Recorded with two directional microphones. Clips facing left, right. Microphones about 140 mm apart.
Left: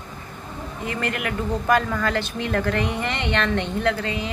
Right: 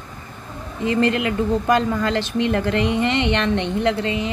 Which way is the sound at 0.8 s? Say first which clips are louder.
Right 8 dB; 25° right (ahead or behind).